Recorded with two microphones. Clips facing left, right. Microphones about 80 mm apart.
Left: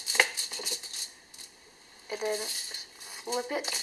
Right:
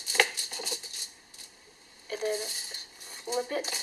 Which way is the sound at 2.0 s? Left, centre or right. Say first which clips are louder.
Right 1 dB; centre.